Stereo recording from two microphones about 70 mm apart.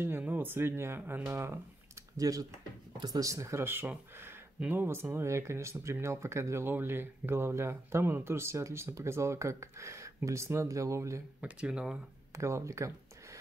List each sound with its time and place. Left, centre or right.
0.2 s speech: right
2.1 s speech: right
4.6 s speech: right
11.4 s speech: centre
12.4 s speech: right